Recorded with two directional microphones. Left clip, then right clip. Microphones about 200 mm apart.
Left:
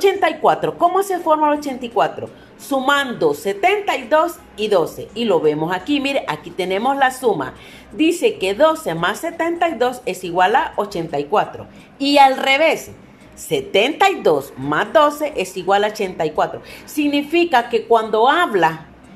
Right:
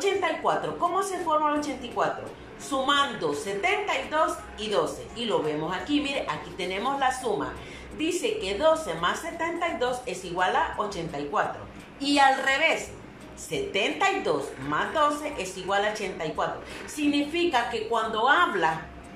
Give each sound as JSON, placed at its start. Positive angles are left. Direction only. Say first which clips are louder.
{"t": 0.0, "sound": "a woman's voice", "louder": "left 10 dB", "side_deg": 50}